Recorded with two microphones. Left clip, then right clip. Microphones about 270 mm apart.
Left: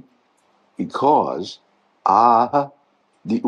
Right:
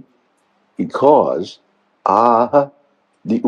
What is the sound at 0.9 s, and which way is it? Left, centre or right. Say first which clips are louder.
Speech: right 5 dB; centre.